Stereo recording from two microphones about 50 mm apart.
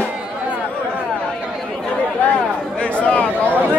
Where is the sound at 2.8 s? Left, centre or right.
Left.